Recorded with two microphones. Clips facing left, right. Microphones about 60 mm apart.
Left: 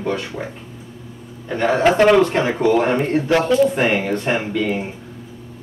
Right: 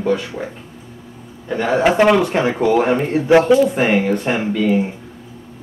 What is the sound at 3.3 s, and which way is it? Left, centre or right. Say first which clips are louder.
Speech: right 8 dB; centre.